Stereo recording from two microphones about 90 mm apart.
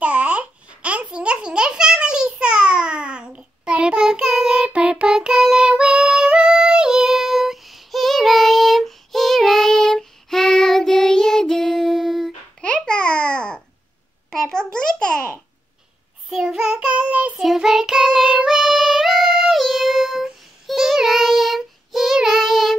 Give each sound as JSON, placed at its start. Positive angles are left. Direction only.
{"t": 0.0, "sound": "babbling", "side_deg": -15}
{"t": 12.6, "sound": "babbling", "side_deg": 10}
{"t": 16.3, "sound": "child singing", "side_deg": -5}